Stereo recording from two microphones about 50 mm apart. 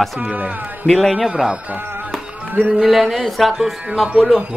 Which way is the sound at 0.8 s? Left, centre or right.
Centre.